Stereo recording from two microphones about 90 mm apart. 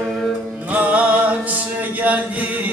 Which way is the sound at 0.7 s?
15° right (ahead or behind).